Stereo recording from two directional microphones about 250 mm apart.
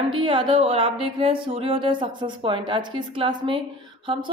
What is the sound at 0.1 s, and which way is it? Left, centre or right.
A woman's voice, centre.